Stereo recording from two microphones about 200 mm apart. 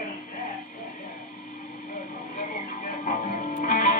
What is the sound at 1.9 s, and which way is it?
Music, 45° left (ahead or behind).